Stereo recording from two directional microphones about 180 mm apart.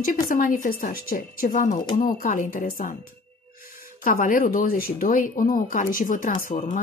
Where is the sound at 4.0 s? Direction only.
50° left (ahead or behind).